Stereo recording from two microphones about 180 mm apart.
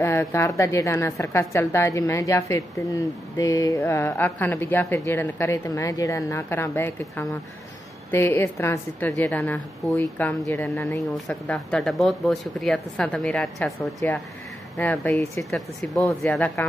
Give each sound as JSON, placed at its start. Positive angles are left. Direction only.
{"t": 0.0, "sound": "a woman's voice", "side_deg": 15}